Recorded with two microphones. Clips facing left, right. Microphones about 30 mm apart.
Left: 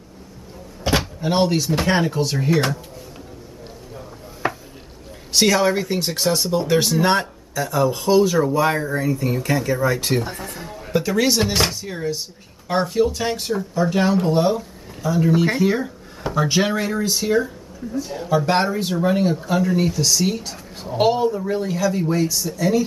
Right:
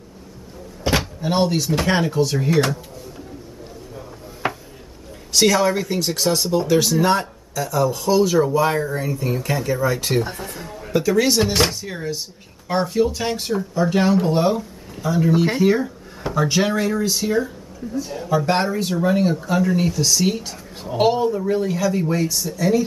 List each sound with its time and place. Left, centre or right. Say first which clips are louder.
0.8 s speech: even; centre
5.3 s speech: even; centre
6.7 s speech: right 1 dB; centre
8.1 s speech: even; centre
10.0 s speech: right 1 dB; centre